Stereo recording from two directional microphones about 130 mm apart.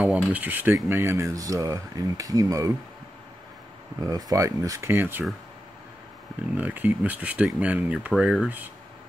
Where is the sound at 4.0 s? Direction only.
30° right (ahead or behind).